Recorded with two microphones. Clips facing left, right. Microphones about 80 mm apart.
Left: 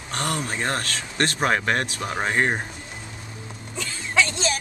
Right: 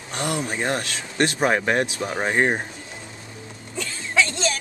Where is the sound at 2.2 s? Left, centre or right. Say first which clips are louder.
Right 2 dB; centre.